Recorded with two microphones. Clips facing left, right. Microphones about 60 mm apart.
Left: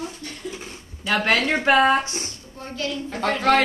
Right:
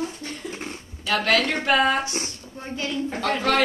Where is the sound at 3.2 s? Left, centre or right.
Left.